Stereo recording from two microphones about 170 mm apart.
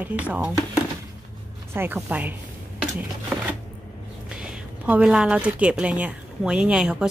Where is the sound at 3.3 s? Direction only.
5° right (ahead or behind).